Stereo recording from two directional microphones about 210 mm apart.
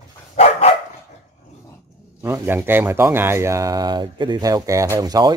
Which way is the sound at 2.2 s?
10° right (ahead or behind).